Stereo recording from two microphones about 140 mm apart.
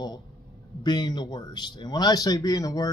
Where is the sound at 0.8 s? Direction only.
30° left (ahead or behind).